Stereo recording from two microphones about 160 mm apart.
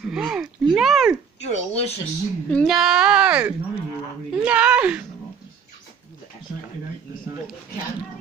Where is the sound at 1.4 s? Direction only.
45° left (ahead or behind).